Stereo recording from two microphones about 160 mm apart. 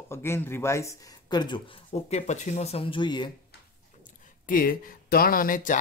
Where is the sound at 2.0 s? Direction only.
45° left (ahead or behind); by 3.3 s 30° left (ahead or behind).